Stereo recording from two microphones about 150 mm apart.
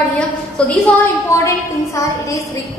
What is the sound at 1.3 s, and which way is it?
Speech, 20° left (ahead or behind).